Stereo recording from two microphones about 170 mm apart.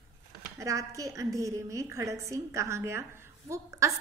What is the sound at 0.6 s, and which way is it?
A woman's voice, 20° right (ahead or behind).